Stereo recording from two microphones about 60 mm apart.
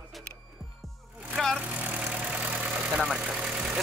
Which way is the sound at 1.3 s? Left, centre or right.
Centre.